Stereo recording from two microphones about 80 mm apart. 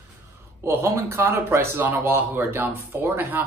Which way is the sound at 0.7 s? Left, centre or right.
Right.